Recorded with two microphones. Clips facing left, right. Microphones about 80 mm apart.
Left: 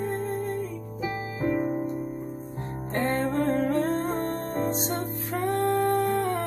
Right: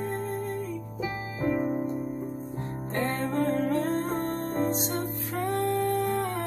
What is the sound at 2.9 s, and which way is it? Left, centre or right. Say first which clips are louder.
Music: left 2 dB; left.